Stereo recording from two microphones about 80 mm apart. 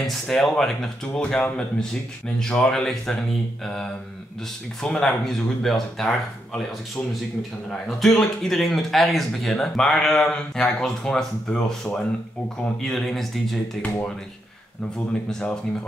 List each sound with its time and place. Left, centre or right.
0.0 s speech: centre
7.7 s speech: centre
13.8 s speech: centre
15.2 s speech: centre